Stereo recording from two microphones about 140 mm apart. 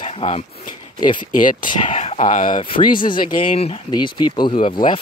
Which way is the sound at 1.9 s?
50° left (ahead or behind).